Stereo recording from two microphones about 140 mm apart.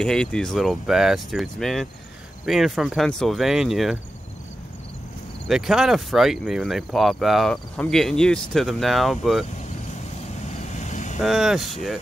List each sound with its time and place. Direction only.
0.0 s speech: 5° left (ahead or behind)
5.5 s speech: 5° right (ahead or behind)
10.4 s vehicle: 55° left (ahead or behind)
11.1 s speech: centre (ahead or behind)